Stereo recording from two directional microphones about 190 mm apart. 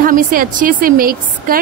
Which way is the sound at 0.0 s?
45° right (ahead or behind).